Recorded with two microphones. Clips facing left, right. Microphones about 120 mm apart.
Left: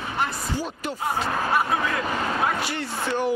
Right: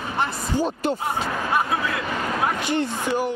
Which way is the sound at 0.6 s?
25° right (ahead or behind).